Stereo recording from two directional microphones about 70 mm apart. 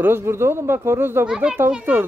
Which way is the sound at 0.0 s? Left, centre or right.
Right.